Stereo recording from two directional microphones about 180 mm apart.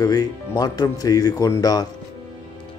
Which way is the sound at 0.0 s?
20° left (ahead or behind).